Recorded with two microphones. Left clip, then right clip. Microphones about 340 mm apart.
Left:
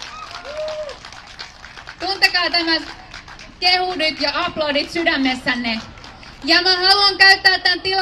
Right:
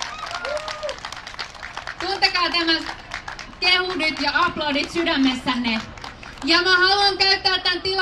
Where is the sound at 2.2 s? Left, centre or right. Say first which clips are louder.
Left 3 dB; centre.